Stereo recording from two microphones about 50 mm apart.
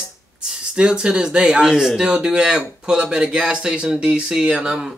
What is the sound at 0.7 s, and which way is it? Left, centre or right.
Speech, centre.